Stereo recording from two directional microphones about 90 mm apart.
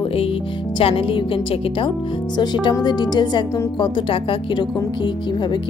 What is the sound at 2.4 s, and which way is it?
Speech, 55° left (ahead or behind).